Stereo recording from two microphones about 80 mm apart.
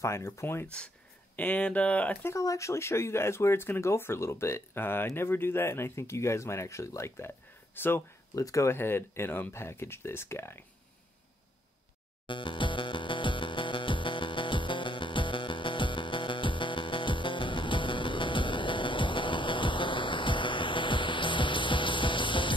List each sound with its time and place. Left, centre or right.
0.0 s speech: left
1.3 s speech: centre
2.2 s speech: left
7.7 s speech: left
8.4 s speech: left
12.3 s music: left